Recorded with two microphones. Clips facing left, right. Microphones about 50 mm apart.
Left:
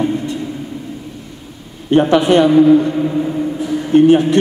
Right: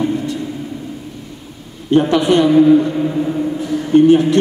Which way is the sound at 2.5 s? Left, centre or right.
Centre.